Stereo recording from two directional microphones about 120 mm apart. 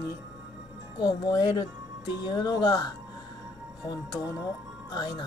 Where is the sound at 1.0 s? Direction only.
35° left (ahead or behind).